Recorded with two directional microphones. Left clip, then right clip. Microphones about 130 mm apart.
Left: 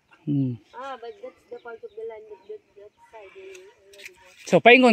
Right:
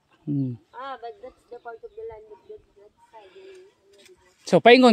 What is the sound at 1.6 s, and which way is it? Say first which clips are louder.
Speech: left 1 dB; 90° left.